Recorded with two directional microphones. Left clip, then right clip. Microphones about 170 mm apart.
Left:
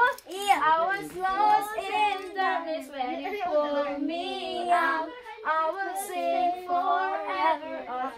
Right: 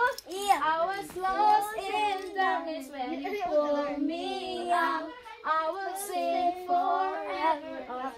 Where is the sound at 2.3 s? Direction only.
15° left (ahead or behind).